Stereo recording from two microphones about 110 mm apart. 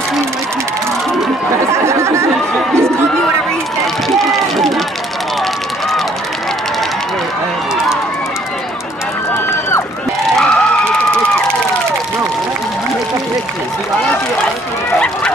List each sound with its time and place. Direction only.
1.7 s chatter: 25° right (ahead or behind)
4.3 s run: centre (ahead or behind)
9.5 s run: 25° left (ahead or behind)
10.4 s vehicle: 5° left (ahead or behind)